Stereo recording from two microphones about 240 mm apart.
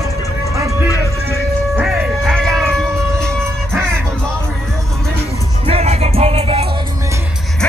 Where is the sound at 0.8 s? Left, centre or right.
Centre.